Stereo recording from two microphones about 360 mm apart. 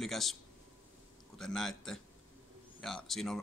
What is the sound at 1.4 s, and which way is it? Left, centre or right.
Speech, centre.